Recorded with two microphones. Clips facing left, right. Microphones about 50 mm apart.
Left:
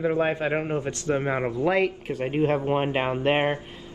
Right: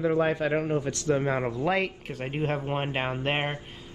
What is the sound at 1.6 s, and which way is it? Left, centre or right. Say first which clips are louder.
Speech: left 4 dB; centre.